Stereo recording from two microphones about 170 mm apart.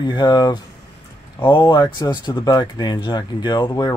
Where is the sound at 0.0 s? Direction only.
25° left (ahead or behind).